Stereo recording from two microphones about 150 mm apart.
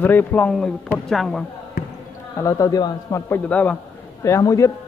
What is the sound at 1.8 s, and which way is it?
Basketball bounce, 85° left.